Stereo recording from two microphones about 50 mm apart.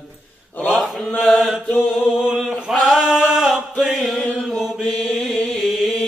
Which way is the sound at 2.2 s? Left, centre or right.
Centre.